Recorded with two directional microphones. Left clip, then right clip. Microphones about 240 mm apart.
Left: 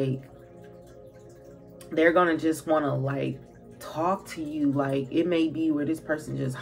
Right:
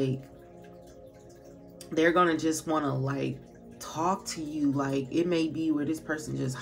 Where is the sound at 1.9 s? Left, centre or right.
Right.